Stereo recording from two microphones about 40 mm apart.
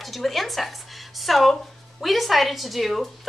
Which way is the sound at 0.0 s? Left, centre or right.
Centre.